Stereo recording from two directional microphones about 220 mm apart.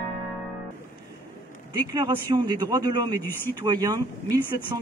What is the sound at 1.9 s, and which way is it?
Speech, 20° right (ahead or behind).